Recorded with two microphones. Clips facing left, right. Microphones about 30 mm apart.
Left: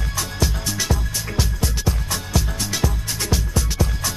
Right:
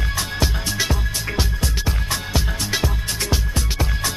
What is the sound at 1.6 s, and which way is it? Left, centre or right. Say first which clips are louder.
Music: even; right.